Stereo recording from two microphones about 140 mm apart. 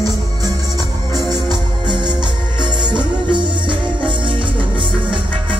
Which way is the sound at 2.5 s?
30° right (ahead or behind).